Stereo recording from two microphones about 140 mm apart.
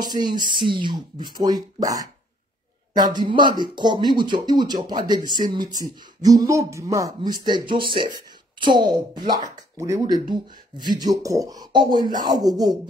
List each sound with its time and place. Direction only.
0.0 s speech: 30° right (ahead or behind)